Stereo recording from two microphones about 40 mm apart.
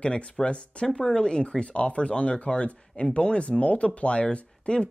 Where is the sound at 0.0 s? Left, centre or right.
Left.